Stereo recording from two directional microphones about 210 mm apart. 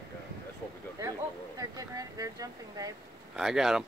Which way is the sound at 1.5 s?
15° right (ahead or behind).